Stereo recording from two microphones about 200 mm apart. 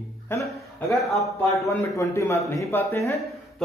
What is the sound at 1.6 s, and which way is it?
Speech, 15° left (ahead or behind).